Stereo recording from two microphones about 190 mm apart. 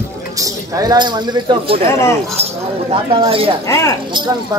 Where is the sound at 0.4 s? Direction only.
20° right (ahead or behind).